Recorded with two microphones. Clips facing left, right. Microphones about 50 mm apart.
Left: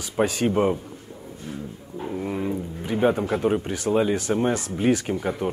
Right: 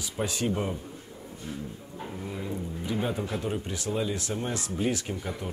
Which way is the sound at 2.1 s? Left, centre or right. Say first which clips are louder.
Left 9 dB; left.